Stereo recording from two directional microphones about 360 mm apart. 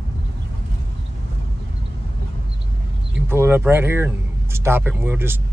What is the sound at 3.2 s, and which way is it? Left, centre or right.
Speech, centre.